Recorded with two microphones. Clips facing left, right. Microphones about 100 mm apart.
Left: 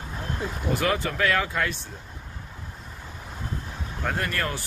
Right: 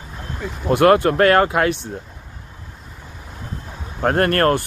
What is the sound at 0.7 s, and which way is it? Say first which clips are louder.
Speech: right 13 dB; 65° right (ahead or behind).